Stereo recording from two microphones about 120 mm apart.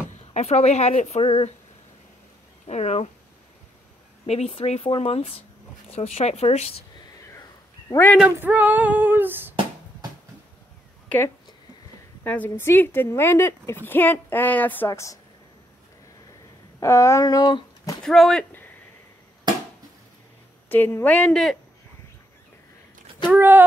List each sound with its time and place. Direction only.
0.3 s speech: 65° left (ahead or behind)
2.6 s speech: 65° left (ahead or behind)
4.3 s speech: 60° left (ahead or behind)
5.9 s speech: 65° left (ahead or behind)
7.9 s a woman's voice: 20° left (ahead or behind)
8.4 s female singing: 15° right (ahead or behind)
12.2 s a woman's voice: 15° left (ahead or behind)
14.9 s speech: 25° left (ahead or behind)
16.8 s a sound: 25° left (ahead or behind)
18.0 s speech: 5° left (ahead or behind)
20.6 s a woman's voice: 15° left (ahead or behind)
23.3 s female singing: 15° right (ahead or behind)